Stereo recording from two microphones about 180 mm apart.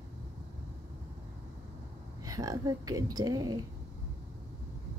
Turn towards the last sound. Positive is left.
turn(degrees=-20)  # may be behind; listen again after turning